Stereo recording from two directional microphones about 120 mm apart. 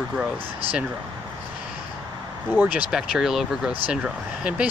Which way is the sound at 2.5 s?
10° right (ahead or behind).